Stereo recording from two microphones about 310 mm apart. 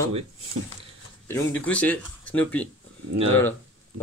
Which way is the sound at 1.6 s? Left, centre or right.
Centre.